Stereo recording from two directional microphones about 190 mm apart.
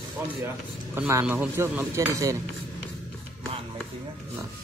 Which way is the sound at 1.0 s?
10° right (ahead or behind).